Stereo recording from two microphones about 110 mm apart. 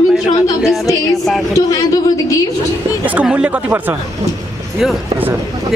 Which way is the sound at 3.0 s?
15° right (ahead or behind).